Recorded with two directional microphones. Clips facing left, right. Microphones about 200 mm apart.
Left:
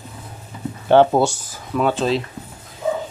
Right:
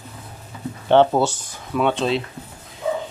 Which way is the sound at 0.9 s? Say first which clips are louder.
Left 2 dB; 10° left (ahead or behind).